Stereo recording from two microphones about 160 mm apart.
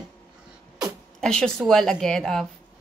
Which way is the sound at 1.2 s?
5° left (ahead or behind).